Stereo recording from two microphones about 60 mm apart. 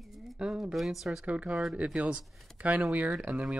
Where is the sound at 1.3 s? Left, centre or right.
Right.